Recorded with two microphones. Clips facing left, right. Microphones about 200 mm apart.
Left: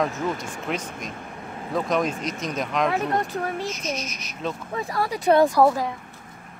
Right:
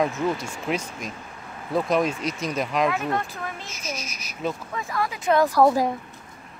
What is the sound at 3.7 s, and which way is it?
Speech, 5° right (ahead or behind).